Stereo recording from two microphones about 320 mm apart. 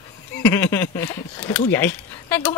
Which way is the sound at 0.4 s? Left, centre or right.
Centre.